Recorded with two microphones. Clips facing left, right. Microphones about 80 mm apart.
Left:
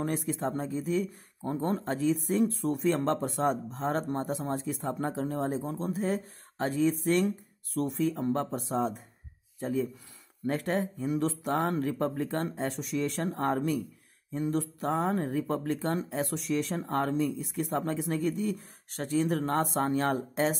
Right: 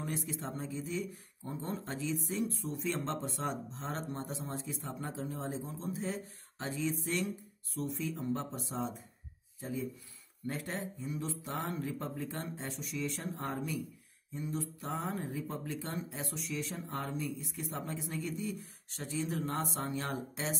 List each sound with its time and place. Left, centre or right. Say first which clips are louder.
0.0 s speech: left 8 dB; left